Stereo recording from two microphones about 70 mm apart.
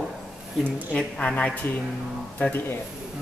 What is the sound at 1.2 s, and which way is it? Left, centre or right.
Speech, centre.